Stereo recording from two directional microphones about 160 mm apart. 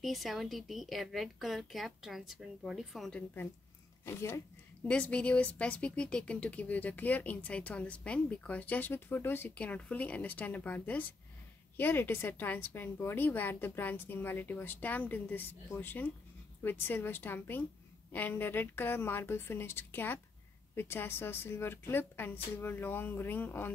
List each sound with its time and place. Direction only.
0.0 s a woman's voice: centre (ahead or behind)